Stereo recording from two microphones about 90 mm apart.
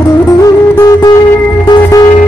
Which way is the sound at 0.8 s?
40° left (ahead or behind).